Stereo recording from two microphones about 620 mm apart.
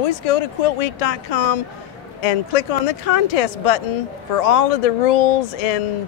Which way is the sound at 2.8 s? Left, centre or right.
Left.